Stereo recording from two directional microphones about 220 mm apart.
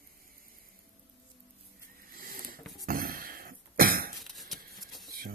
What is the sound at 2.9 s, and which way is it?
Cough, 40° right (ahead or behind).